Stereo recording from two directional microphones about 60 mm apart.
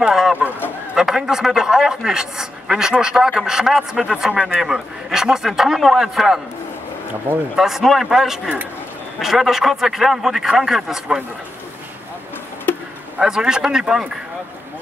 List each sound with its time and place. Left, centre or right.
0.0 s a man's voice: centre
7.5 s a man's voice: centre
13.2 s a man's voice: centre